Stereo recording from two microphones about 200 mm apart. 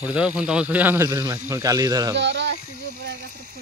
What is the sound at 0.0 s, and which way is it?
Speech, 5° right (ahead or behind).